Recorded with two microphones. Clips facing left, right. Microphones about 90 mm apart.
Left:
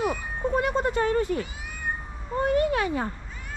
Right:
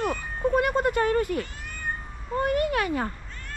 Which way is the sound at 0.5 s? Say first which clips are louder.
Right 1 dB; 60° right (ahead or behind).